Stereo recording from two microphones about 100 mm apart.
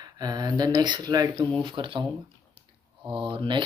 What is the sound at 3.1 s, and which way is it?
Speech, 55° right (ahead or behind).